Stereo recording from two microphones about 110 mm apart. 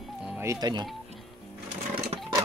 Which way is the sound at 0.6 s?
40° right (ahead or behind).